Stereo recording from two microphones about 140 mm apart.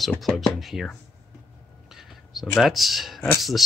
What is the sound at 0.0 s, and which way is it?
Speech, 5° left (ahead or behind).